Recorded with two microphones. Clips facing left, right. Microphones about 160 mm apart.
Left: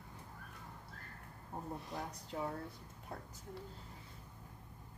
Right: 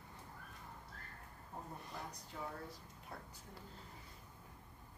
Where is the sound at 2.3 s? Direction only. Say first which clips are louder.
Left 7 dB; 55° left (ahead or behind).